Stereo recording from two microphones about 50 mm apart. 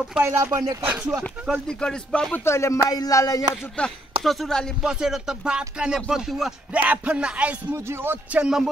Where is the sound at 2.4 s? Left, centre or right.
Left.